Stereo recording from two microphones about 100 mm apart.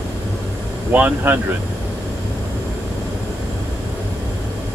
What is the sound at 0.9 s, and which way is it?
Speech, 20° right (ahead or behind).